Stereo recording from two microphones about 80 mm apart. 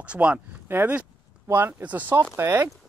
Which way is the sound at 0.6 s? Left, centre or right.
Right.